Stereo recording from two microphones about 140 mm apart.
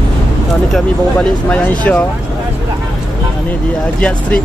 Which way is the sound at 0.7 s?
5° left (ahead or behind).